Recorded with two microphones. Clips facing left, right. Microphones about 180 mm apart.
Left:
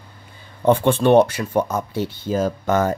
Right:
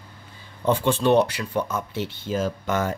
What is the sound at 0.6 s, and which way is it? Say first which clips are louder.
Speech: left 5 dB; 60° left (ahead or behind).